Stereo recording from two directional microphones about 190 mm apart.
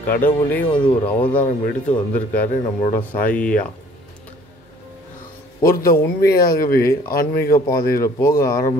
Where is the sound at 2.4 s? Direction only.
45° left (ahead or behind).